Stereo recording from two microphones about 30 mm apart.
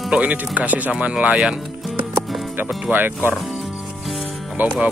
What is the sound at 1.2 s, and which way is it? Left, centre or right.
Speech, right.